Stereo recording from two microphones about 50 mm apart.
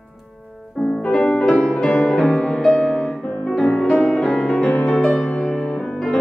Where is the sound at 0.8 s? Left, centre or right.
Centre.